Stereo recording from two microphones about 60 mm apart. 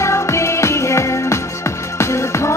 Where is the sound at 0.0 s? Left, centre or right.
Left.